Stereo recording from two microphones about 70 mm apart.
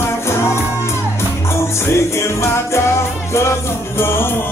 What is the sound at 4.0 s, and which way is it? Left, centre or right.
Music, left.